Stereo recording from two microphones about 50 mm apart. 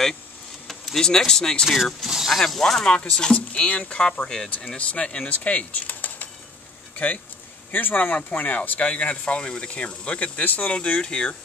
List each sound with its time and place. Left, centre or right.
0.7 s speech: centre
2.6 s speech: centre